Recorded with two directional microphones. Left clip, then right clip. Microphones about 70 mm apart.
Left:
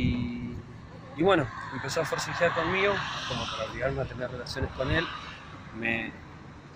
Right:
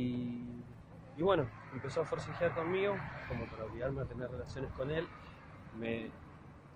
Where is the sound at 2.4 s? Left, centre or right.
Centre.